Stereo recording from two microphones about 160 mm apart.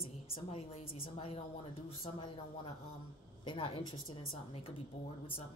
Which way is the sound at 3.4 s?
35° left (ahead or behind).